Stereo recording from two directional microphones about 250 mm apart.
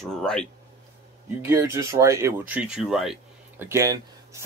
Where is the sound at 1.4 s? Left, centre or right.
Centre.